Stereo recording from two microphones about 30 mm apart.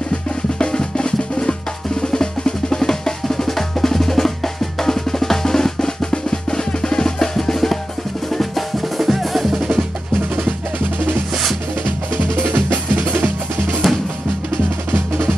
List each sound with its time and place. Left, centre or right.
0.6 s drum: left; by 7.8 s centre
8.4 s percussion: centre
12.2 s percussion: right
13.8 s drum: centre